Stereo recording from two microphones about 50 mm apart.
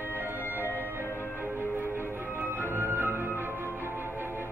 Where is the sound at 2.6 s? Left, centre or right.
Right.